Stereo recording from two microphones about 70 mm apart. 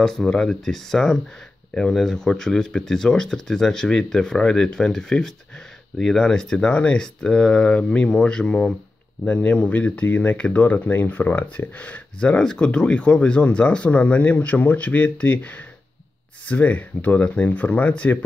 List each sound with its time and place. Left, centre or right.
0.0 s speech: centre